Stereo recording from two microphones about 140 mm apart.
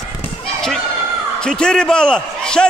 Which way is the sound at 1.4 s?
5° left (ahead or behind).